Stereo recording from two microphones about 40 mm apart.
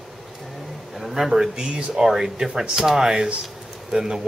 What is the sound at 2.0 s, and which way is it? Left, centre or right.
Speech, centre.